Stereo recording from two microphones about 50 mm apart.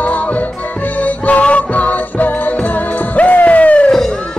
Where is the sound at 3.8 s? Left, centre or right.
Centre.